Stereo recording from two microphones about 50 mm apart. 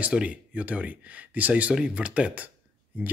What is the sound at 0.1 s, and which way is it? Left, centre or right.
Speech, right.